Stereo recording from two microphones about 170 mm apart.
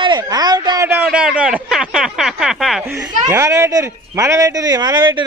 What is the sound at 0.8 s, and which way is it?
A man's voice, 10° right (ahead or behind).